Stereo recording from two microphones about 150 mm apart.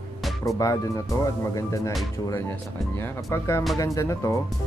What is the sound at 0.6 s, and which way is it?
Speech, 20° left (ahead or behind).